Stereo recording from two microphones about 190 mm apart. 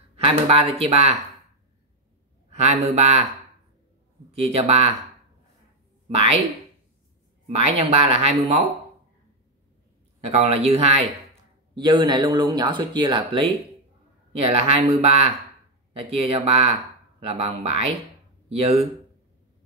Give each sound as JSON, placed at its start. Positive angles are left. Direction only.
{"t": 0.1, "sound": "speech", "side_deg": -30}
{"t": 2.5, "sound": "speech", "side_deg": -35}
{"t": 4.4, "sound": "speech", "side_deg": -30}
{"t": 7.4, "sound": "speech", "side_deg": -30}
{"t": 10.2, "sound": "speech", "side_deg": -35}